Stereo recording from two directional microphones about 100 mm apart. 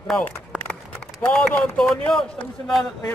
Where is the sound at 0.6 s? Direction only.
10° left (ahead or behind).